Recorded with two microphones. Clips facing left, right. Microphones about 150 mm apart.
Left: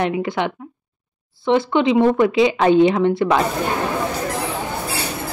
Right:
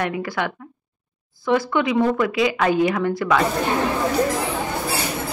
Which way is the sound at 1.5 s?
25° left (ahead or behind).